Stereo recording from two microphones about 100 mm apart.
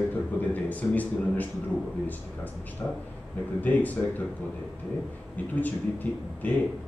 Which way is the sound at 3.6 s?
15° left (ahead or behind).